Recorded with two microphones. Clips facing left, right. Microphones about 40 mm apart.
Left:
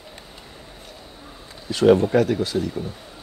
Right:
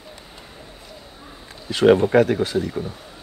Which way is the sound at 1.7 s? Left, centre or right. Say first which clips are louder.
Right 1 dB; right.